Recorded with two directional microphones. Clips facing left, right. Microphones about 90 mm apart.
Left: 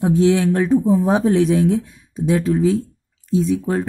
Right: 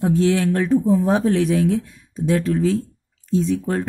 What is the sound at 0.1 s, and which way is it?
Speech, 20° left (ahead or behind).